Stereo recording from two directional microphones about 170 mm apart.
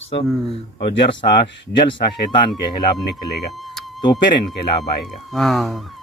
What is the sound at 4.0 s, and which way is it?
Speech, 25° left (ahead or behind).